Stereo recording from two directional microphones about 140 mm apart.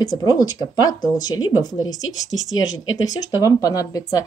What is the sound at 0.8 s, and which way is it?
Speech, 25° left (ahead or behind).